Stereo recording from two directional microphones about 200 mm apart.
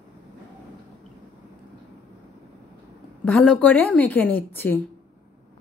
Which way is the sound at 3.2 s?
5° left (ahead or behind).